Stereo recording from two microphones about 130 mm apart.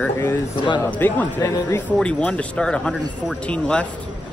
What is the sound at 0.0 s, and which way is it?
Speech, 15° left (ahead or behind).